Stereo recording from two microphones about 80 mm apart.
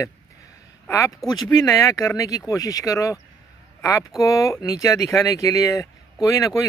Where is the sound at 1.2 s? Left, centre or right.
Left.